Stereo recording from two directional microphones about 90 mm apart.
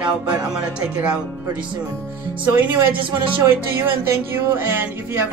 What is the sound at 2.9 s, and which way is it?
Speech, 70° right (ahead or behind).